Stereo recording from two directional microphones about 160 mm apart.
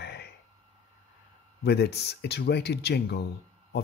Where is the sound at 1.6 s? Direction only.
90° left.